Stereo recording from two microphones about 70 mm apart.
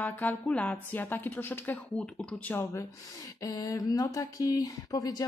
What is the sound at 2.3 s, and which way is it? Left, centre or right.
Speech, left.